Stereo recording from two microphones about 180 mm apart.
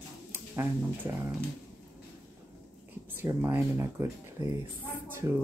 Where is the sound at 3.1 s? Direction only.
10° right (ahead or behind).